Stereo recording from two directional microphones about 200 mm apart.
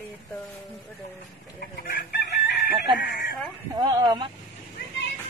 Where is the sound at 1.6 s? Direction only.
50° left (ahead or behind).